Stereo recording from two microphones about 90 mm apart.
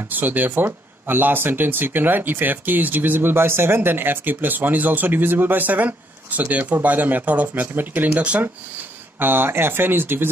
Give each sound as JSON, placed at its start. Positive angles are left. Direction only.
{"t": 0.1, "sound": "speech", "side_deg": -20}